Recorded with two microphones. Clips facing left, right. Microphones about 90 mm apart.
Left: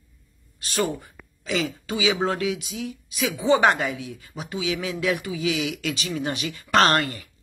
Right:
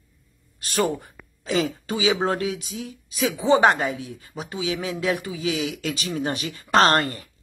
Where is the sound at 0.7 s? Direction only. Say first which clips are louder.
Right 2 dB; 50° right (ahead or behind).